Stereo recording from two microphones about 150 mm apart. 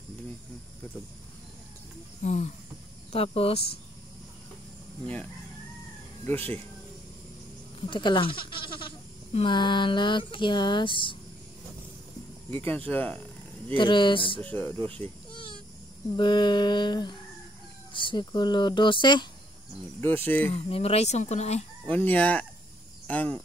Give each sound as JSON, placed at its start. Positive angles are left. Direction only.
{"t": 2.2, "sound": "speech", "side_deg": 50}
{"t": 6.2, "sound": "speech", "side_deg": 10}
{"t": 7.8, "sound": "speech", "side_deg": 30}
{"t": 12.4, "sound": "speech", "side_deg": 15}
{"t": 13.7, "sound": "speech", "side_deg": 35}
{"t": 14.4, "sound": "speech", "side_deg": 10}
{"t": 15.3, "sound": "a sound", "side_deg": 35}
{"t": 16.2, "sound": "speech", "side_deg": 30}
{"t": 20.0, "sound": "speech", "side_deg": 15}
{"t": 20.5, "sound": "speech", "side_deg": 40}
{"t": 21.8, "sound": "speech", "side_deg": 10}